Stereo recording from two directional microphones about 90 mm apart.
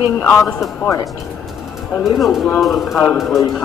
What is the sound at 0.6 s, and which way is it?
Speech, 35° left (ahead or behind).